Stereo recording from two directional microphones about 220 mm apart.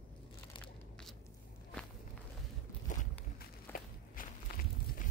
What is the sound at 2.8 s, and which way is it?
Walk, 40° left (ahead or behind).